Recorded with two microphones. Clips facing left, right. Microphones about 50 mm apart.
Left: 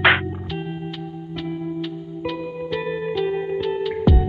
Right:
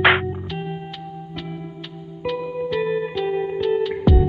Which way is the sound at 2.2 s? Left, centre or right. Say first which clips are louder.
Right 3 dB; centre.